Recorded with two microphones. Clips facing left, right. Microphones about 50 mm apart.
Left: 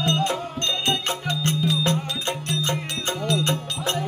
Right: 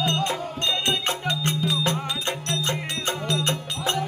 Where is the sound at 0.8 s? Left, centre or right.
Centre.